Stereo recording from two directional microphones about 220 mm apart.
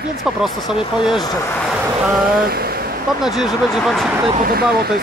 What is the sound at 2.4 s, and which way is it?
Speech, 45° right (ahead or behind).